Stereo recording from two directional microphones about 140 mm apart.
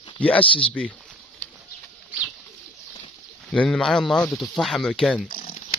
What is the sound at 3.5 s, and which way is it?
Speech, 5° left (ahead or behind).